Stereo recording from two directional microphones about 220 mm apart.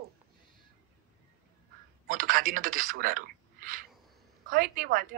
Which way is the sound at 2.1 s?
40° right (ahead or behind).